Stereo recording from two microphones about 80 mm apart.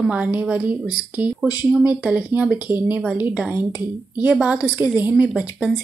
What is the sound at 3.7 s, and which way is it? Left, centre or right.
A woman's voice, centre.